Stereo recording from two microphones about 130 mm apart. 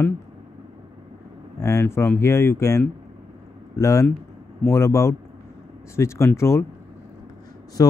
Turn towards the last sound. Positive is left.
turn(degrees=25)  # may be behind; listen again after turning